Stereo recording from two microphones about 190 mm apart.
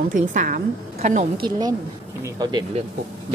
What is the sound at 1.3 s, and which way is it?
Speech, 25° right (ahead or behind).